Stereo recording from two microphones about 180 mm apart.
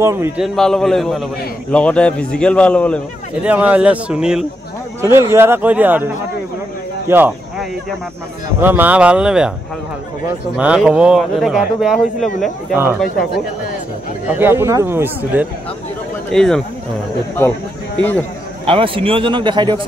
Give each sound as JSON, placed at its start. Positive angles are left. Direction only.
{"t": 0.0, "sound": "speech", "side_deg": -15}
{"t": 0.4, "sound": "a man's voice", "side_deg": 0}
{"t": 3.4, "sound": "speech", "side_deg": -10}
{"t": 7.1, "sound": "a sound", "side_deg": -10}
{"t": 8.5, "sound": "speech", "side_deg": -10}
{"t": 10.6, "sound": "speech", "side_deg": -5}
{"t": 14.4, "sound": "speech", "side_deg": -15}
{"t": 16.3, "sound": "speech", "side_deg": 5}
{"t": 18.7, "sound": "a man's voice", "side_deg": -30}